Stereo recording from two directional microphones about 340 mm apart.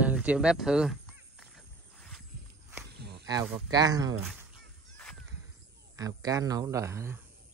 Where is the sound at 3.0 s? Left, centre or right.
Right.